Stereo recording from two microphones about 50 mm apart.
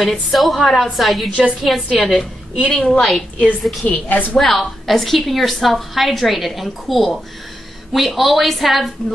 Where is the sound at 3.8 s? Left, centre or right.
Left.